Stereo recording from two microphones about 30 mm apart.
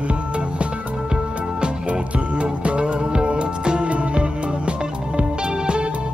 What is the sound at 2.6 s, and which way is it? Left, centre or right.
Music, right.